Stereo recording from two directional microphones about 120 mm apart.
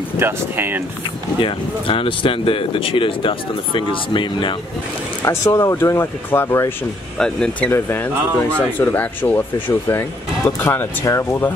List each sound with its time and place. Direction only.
0.2 s speech: 15° right (ahead or behind)
1.4 s speech: 45° left (ahead or behind)
5.2 s speech: 25° left (ahead or behind)
7.2 s speech: 5° left (ahead or behind)
7.7 s speech: 20° left (ahead or behind)